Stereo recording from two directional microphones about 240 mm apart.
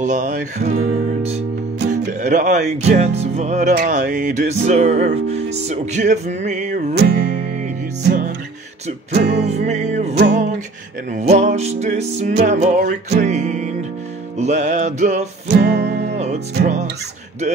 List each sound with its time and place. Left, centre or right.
0.0 s music: right
9.4 s music: right
11.1 s music: right
15.6 s music: right
16.5 s music: right